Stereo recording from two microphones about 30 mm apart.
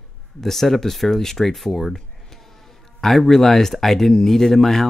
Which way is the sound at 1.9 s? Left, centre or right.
Centre.